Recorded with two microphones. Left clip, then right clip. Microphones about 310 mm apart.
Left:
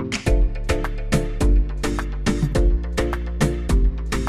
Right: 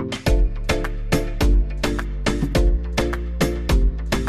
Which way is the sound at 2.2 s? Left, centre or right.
Centre.